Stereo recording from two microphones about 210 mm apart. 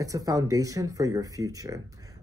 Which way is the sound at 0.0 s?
15° right (ahead or behind).